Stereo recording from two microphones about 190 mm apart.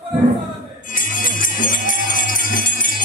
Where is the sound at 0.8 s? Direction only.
45° left (ahead or behind).